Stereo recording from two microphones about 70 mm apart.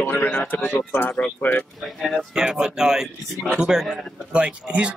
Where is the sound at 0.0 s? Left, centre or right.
Left.